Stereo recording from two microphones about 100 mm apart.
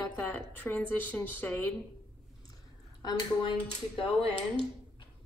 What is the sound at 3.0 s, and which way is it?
Speech, 50° left (ahead or behind).